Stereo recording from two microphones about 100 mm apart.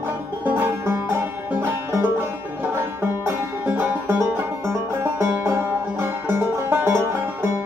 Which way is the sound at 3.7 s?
20° right (ahead or behind).